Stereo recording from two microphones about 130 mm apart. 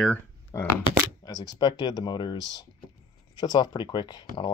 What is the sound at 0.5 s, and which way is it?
Speech, 25° left (ahead or behind).